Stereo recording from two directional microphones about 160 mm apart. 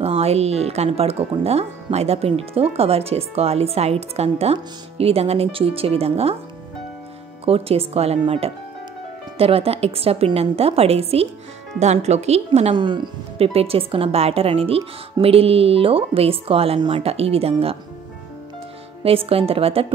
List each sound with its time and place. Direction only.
0.0 s a woman's voice: 40° right (ahead or behind)
7.4 s speech: 40° right (ahead or behind)
19.0 s speech: 35° right (ahead or behind)